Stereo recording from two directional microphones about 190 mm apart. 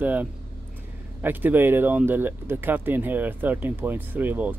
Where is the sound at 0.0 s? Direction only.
10° right (ahead or behind).